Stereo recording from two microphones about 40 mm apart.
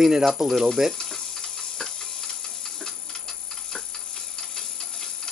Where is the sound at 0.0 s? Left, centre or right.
Centre.